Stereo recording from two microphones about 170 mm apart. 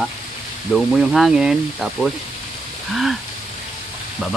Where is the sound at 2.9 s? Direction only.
Centre (ahead or behind).